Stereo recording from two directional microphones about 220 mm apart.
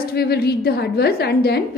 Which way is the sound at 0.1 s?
45° left (ahead or behind).